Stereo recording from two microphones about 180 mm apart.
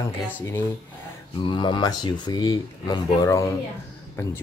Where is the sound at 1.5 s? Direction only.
25° left (ahead or behind).